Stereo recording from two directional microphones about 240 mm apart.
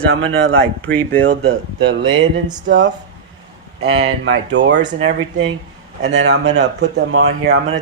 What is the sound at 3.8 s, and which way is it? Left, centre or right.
Speech, right.